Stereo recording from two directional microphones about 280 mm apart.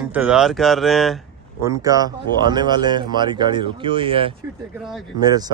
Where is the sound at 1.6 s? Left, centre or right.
Centre.